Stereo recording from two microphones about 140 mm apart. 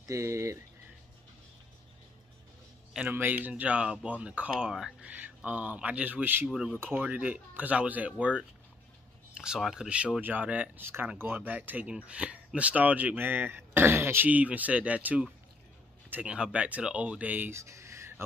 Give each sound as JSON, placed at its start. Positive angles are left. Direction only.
{"t": 0.1, "sound": "speech", "side_deg": -20}
{"t": 3.1, "sound": "speech", "side_deg": -15}